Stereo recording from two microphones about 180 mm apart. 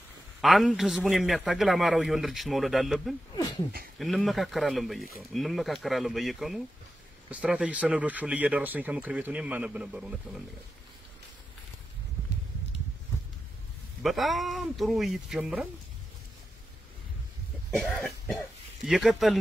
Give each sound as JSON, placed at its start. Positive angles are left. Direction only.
{"t": 0.4, "sound": "a man's voice", "side_deg": 0}
{"t": 3.3, "sound": "speech", "side_deg": 20}
{"t": 4.0, "sound": "a man's voice", "side_deg": 0}
{"t": 14.0, "sound": "a man's voice", "side_deg": 0}
{"t": 17.7, "sound": "a man's voice", "side_deg": 0}